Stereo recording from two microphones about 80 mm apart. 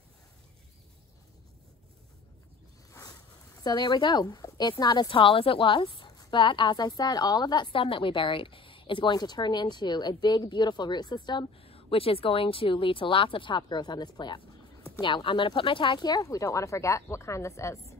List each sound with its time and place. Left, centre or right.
2.9 s boat: left
3.6 s a woman's voice: left
12.3 s a woman's voice: left
15.0 s a woman's voice: left
16.2 s a woman's voice: left